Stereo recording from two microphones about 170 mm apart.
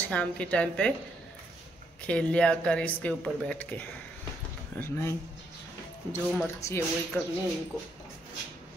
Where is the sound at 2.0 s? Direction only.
5° left (ahead or behind).